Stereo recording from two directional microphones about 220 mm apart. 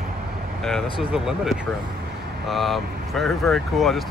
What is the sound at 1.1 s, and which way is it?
Speech, centre (ahead or behind).